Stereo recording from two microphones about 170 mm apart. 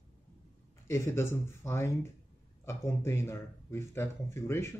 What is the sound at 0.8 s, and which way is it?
Speech, 15° left (ahead or behind).